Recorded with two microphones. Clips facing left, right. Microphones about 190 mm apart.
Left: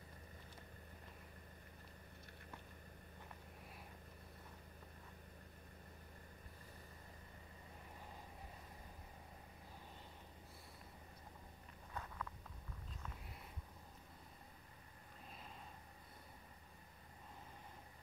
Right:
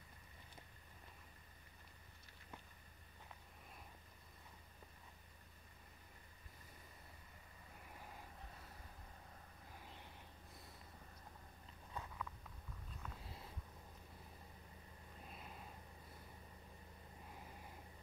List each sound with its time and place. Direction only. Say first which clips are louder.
11.9 s walk: even; 15° right (ahead or behind)